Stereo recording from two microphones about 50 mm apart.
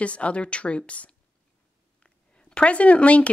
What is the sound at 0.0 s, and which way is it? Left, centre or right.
Speech, left.